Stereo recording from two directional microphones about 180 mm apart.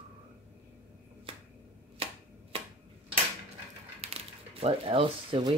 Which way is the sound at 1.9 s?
30° right (ahead or behind).